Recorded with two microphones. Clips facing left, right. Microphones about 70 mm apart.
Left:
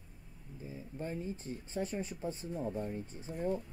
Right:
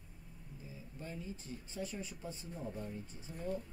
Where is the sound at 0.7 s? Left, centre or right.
Left.